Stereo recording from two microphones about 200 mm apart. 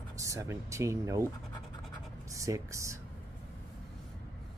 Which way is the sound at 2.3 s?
15° right (ahead or behind).